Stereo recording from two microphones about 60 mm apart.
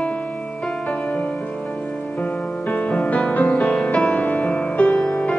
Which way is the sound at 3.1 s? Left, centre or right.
Left.